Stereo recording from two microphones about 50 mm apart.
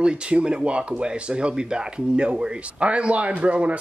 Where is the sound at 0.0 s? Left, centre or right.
Right.